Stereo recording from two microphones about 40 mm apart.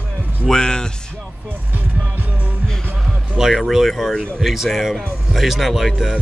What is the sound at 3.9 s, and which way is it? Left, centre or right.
Speech, centre.